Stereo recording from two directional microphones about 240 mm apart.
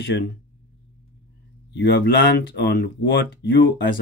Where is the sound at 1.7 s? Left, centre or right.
Left.